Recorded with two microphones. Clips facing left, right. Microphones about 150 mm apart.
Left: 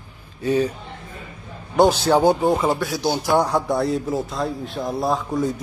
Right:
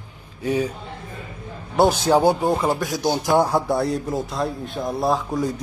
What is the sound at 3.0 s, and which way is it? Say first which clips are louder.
Speech: right 1 dB; 15° right (ahead or behind).